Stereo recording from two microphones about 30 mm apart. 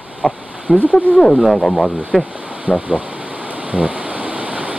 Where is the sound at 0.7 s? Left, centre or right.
Right.